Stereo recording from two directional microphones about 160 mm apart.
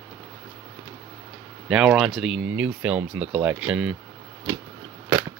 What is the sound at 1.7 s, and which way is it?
Speech, 5° right (ahead or behind).